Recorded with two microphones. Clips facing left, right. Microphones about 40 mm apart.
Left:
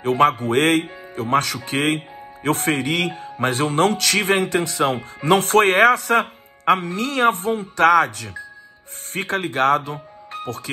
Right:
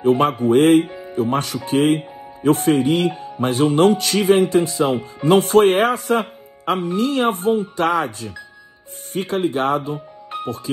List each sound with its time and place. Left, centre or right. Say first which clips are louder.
0.0 s speech: right 1 dB; left